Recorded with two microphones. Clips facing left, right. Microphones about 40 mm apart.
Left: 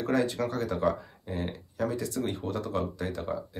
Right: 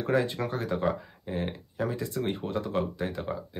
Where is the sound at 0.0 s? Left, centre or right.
Right.